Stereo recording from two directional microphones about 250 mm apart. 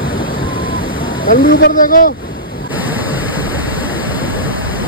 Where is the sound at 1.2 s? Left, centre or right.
Left.